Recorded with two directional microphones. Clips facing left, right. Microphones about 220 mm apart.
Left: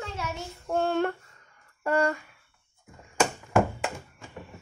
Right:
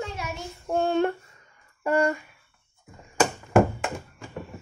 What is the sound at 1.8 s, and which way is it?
Speech, 15° right (ahead or behind).